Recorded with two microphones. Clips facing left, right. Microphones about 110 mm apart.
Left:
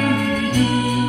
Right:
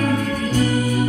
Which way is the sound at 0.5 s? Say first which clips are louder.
Right 1 dB; 40° right (ahead or behind).